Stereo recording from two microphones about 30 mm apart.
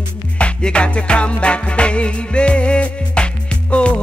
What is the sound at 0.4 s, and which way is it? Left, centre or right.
Music, left.